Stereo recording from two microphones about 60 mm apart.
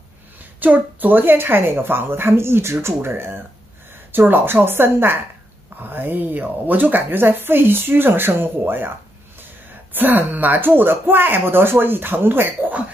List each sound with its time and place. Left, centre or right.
0.6 s a woman's voice: right
9.9 s a woman's voice: right